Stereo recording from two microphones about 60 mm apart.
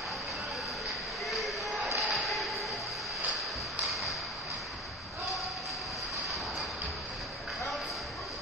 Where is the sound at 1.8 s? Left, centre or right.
Centre.